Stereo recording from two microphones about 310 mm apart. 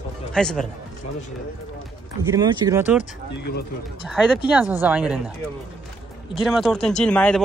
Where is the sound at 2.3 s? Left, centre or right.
Centre.